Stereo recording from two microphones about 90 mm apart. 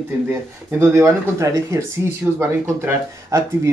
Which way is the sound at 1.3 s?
30° right (ahead or behind).